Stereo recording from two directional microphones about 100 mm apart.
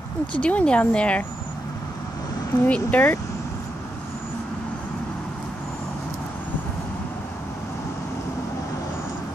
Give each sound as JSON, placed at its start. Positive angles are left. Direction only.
{"t": 0.3, "sound": "speech", "side_deg": 10}
{"t": 2.6, "sound": "speech", "side_deg": 15}